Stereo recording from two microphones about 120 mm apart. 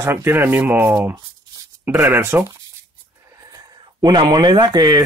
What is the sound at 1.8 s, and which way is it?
Speech, 15° right (ahead or behind).